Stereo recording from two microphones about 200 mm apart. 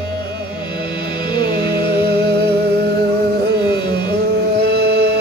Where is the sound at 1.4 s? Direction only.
50° right (ahead or behind).